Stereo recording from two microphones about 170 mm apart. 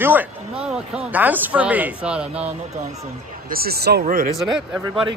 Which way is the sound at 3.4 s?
65° right (ahead or behind).